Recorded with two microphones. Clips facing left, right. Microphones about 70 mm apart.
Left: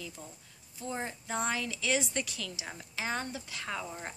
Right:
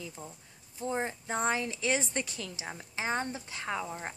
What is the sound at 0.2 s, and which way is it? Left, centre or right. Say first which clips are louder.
A woman's voice: right 3 dB; right.